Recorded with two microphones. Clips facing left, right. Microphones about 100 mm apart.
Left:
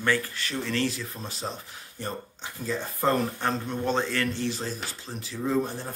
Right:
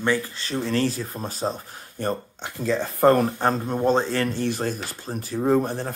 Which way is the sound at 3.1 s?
35° right (ahead or behind).